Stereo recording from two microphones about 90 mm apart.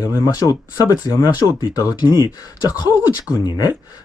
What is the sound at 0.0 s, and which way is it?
Speech, 35° left (ahead or behind).